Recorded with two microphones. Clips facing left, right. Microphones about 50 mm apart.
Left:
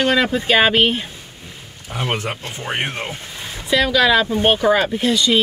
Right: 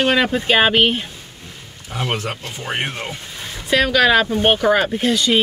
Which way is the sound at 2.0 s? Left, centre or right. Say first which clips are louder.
Even; centre.